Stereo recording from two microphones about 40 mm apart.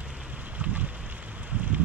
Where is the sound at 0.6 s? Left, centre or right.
Right.